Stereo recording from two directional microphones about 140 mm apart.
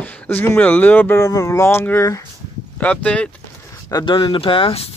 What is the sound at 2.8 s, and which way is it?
Speech, 10° left (ahead or behind).